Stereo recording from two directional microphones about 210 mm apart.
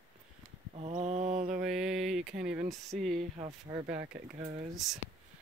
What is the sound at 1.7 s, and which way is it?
Speech, centre (ahead or behind).